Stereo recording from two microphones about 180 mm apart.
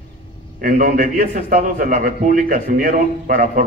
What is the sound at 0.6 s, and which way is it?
A man's voice, 50° right (ahead or behind).